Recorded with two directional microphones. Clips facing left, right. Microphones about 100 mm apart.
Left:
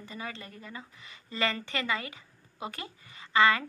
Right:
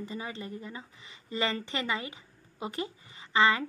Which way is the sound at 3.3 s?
20° right (ahead or behind).